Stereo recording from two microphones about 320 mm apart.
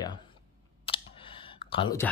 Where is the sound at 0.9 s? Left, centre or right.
Centre.